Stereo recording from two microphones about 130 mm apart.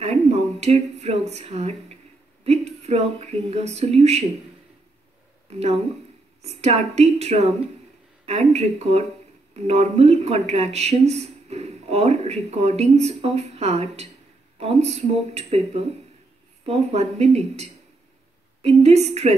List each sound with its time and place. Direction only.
0.0 s speech: 55° right (ahead or behind)
5.5 s speech: 55° right (ahead or behind)